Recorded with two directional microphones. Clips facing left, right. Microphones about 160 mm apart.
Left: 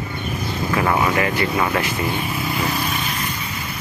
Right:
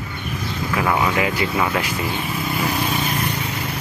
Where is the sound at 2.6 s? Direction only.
15° right (ahead or behind).